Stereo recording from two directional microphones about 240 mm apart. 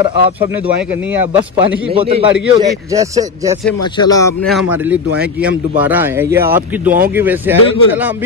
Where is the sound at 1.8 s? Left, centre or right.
Right.